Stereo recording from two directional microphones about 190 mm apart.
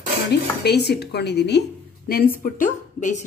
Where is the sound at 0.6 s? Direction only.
60° left (ahead or behind).